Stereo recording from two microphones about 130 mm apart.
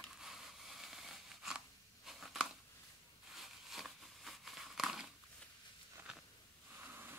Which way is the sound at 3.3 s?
Centre (ahead or behind).